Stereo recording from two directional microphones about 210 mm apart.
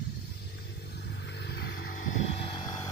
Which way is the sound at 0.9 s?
50° left (ahead or behind).